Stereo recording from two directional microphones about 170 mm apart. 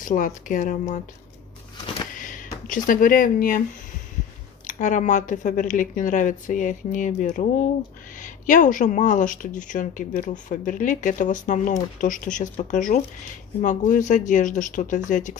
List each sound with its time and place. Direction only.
0.0 s speech: 50° left (ahead or behind)
2.1 s a sound: 50° left (ahead or behind)
2.6 s speech: 55° left (ahead or behind)
4.6 s speech: 45° left (ahead or behind)